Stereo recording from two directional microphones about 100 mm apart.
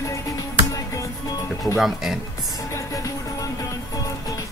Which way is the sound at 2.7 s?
35° left (ahead or behind).